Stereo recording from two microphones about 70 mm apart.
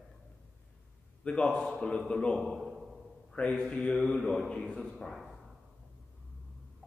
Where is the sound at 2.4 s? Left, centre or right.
Centre.